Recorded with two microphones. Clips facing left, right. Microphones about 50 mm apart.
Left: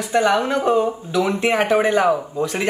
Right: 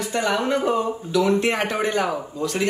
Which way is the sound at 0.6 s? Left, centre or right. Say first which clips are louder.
Left 4 dB; centre.